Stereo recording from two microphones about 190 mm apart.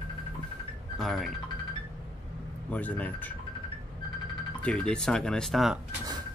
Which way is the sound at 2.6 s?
10° left (ahead or behind).